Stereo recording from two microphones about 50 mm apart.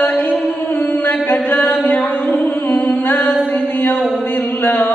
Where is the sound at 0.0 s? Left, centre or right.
Left.